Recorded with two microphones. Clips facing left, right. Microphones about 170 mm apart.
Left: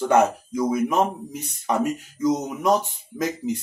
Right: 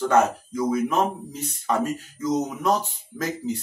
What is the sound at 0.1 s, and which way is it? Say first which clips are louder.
Speech: left 3 dB; 15° left (ahead or behind).